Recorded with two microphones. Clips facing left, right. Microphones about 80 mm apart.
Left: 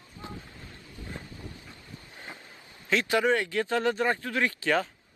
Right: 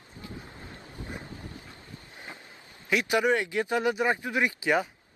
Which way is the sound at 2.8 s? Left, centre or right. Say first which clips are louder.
Even; centre.